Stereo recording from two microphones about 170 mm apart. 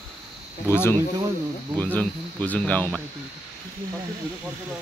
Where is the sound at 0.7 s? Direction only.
15° left (ahead or behind).